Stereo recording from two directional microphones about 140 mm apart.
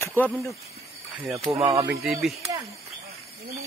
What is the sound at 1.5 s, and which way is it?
Speech, 45° right (ahead or behind).